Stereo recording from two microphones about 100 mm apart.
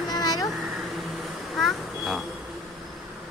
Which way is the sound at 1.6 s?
Centre (ahead or behind).